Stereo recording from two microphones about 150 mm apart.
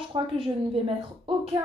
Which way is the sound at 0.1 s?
35° right (ahead or behind).